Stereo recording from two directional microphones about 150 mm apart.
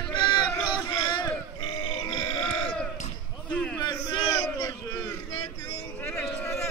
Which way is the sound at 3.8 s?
30° left (ahead or behind).